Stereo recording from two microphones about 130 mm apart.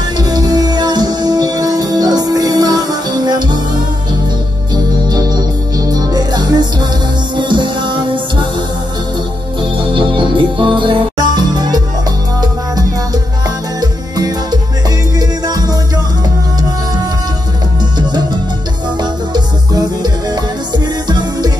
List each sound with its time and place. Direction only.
0.2 s music: 30° right (ahead or behind)
5.9 s music: 30° right (ahead or behind)
9.6 s music: 40° right (ahead or behind)
19.3 s music: 30° right (ahead or behind)